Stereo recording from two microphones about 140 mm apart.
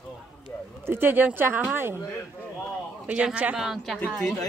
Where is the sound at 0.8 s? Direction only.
15° right (ahead or behind).